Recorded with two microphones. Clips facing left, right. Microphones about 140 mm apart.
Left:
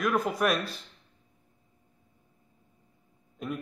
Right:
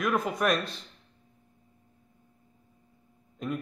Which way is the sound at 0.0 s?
Centre (ahead or behind).